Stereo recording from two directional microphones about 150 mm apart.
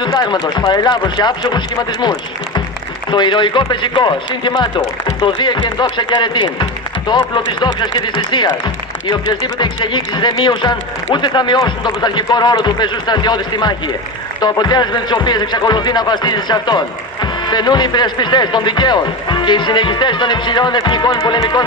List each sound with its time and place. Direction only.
0.0 s a man's voice: 30° left (ahead or behind)